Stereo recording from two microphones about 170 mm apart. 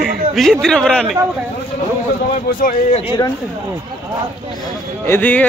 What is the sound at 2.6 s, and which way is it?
Speech, 55° left (ahead or behind).